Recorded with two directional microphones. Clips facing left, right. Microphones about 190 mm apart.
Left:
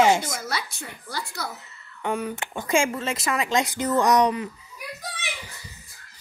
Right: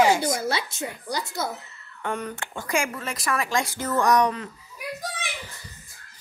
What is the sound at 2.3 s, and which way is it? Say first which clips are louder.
Speech: left 4 dB; 20° left (ahead or behind).